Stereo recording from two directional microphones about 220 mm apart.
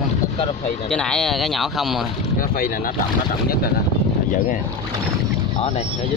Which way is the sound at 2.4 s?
40° left (ahead or behind).